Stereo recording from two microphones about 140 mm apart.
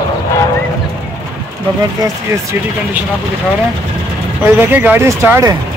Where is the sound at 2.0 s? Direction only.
20° right (ahead or behind).